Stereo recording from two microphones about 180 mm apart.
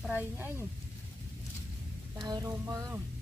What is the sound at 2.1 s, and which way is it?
Speech, 20° right (ahead or behind).